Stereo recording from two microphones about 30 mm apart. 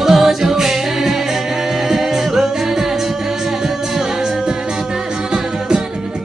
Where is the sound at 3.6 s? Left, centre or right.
Centre.